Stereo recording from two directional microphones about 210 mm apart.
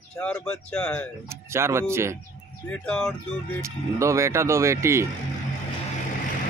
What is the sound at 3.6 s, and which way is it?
Speech, 15° right (ahead or behind).